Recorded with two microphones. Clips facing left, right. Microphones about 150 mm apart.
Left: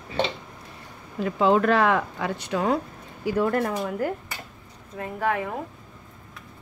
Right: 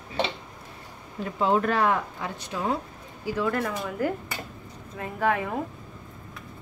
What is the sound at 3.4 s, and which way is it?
Speech, 40° left (ahead or behind).